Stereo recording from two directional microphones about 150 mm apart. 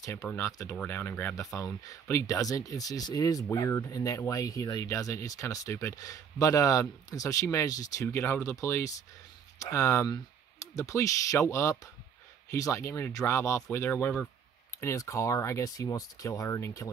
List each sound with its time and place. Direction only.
0.0 s speech: 15° left (ahead or behind)